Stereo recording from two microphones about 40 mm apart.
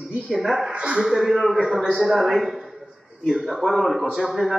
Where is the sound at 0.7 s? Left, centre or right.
Right.